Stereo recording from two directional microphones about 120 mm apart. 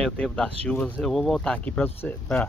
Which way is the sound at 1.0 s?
Centre (ahead or behind).